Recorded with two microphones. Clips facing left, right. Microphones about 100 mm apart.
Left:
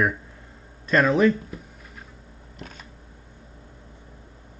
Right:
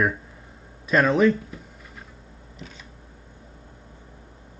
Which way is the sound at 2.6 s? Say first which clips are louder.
Left 2 dB; 50° left (ahead or behind).